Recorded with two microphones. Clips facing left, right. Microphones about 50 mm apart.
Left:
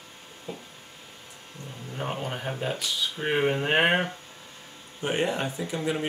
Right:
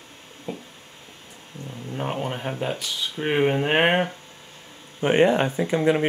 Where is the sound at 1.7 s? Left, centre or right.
Centre.